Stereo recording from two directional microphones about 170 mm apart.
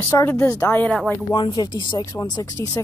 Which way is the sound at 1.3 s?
25° left (ahead or behind).